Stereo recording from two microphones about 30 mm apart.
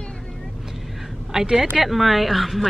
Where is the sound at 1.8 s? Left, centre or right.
Centre.